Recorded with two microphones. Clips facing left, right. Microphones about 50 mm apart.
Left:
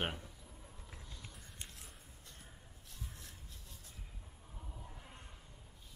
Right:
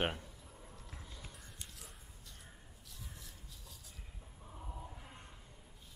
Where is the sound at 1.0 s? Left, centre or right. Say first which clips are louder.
Right 1 dB; centre.